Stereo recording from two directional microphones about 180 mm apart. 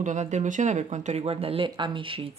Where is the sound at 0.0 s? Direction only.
40° right (ahead or behind).